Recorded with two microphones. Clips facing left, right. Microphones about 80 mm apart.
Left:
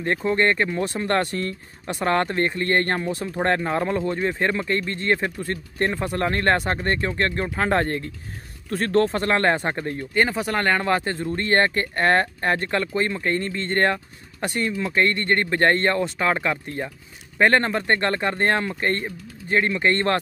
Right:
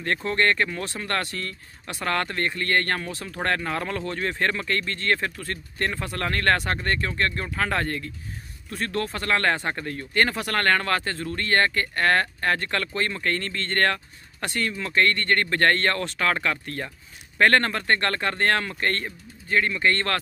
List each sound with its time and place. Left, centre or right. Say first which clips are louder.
0.0 s speech: left 3 dB; centre